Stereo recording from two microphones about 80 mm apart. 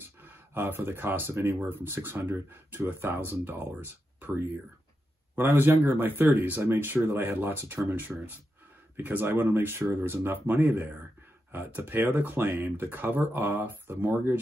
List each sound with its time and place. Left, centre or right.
0.0 s speech: right